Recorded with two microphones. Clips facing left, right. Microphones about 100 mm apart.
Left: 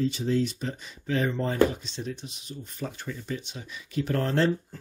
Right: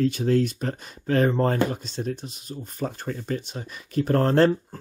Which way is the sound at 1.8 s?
45° right (ahead or behind).